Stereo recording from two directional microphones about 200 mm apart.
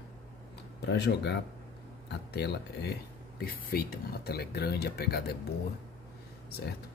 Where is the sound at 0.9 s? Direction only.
60° left (ahead or behind).